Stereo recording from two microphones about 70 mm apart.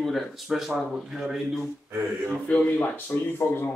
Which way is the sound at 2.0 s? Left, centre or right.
Right.